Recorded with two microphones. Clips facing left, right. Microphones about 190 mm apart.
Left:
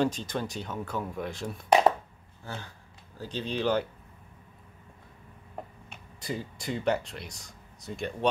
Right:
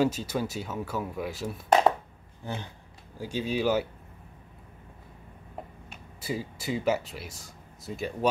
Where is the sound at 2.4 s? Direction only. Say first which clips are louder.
Right 4 dB; 15° right (ahead or behind).